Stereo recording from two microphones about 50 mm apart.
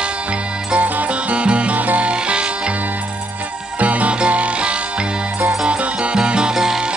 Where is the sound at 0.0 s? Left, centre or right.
Right.